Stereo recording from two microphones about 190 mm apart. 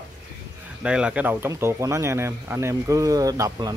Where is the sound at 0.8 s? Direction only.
5° right (ahead or behind).